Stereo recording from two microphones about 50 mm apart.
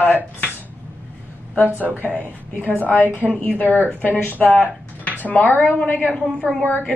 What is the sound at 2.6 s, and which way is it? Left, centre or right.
A woman's voice, left.